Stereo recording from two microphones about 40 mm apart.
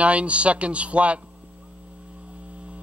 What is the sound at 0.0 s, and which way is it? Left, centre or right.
Mains hum, right.